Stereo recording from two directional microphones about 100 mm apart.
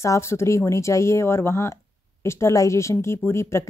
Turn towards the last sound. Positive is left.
turn(degrees=25)  # may be behind; listen again after turning